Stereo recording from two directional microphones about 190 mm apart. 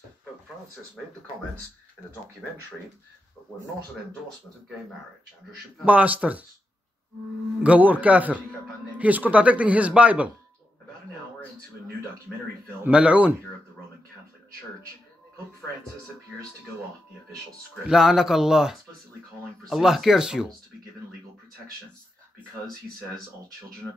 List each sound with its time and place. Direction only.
5.9 s speech: 10° right (ahead or behind)
7.6 s speech: 10° right (ahead or behind)
12.3 s speech: 5° left (ahead or behind)
17.8 s speech: 5° right (ahead or behind)